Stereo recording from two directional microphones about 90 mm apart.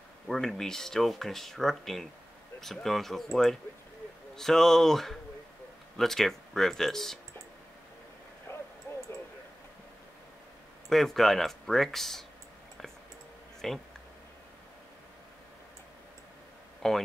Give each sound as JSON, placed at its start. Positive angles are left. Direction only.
{"t": 0.3, "sound": "speech", "side_deg": 5}
{"t": 8.5, "sound": "a sound", "side_deg": 30}
{"t": 10.9, "sound": "speech", "side_deg": 5}
{"t": 13.6, "sound": "speech", "side_deg": 5}
{"t": 16.8, "sound": "speech", "side_deg": 5}